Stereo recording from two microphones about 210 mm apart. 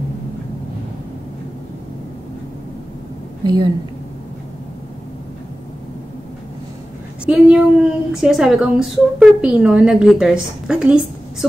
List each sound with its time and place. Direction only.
3.4 s a woman's voice: 20° right (ahead or behind)
7.2 s a woman's voice: 5° right (ahead or behind)